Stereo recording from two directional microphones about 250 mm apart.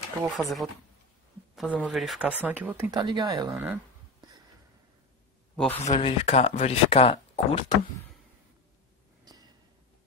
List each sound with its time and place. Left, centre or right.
0.2 s speech: centre
5.9 s speech: left
9.2 s a sound: centre